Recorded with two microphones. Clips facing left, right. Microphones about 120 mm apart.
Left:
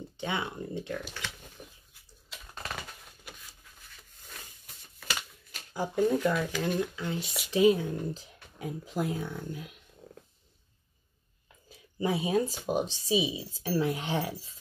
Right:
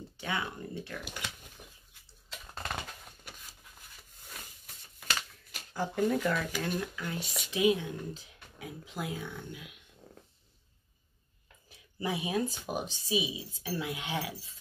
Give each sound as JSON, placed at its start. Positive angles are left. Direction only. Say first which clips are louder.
{"t": 0.2, "sound": "speech", "louder": "left 2 dB", "side_deg": 25}
{"t": 1.0, "sound": "speech", "louder": "left 1 dB", "side_deg": -15}
{"t": 5.7, "sound": "speech", "louder": "left 3 dB", "side_deg": 10}
{"t": 6.6, "sound": "speech", "louder": "left 4 dB", "side_deg": 25}
{"t": 7.2, "sound": "speech", "louder": "left 2 dB", "side_deg": 0}
{"t": 7.5, "sound": "speech", "louder": "left 5 dB", "side_deg": 35}
{"t": 10.0, "sound": "a sound", "louder": "left 4 dB", "side_deg": 0}
{"t": 12.0, "sound": "speech", "louder": "left 4 dB", "side_deg": 30}